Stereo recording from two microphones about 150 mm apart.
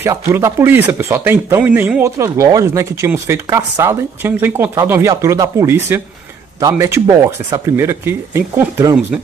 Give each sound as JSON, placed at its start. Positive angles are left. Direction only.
{"t": 0.0, "sound": "speech", "side_deg": -15}